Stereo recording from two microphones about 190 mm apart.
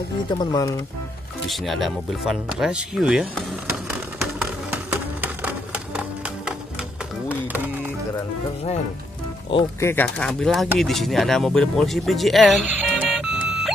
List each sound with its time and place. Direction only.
0.3 s speech: 20° left (ahead or behind)
1.5 s music: centre (ahead or behind)
7.2 s a sound: 10° right (ahead or behind)
9.8 s speech: 10° left (ahead or behind)